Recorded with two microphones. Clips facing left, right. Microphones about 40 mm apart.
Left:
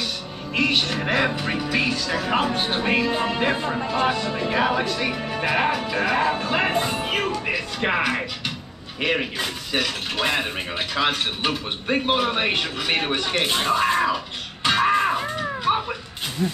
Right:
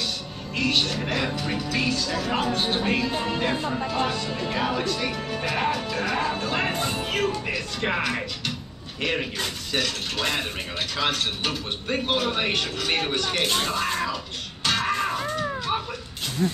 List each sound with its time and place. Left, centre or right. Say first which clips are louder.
0.6 s a man's voice: left 3 dB; centre